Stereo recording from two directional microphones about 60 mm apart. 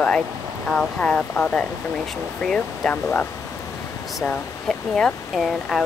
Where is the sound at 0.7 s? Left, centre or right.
Centre.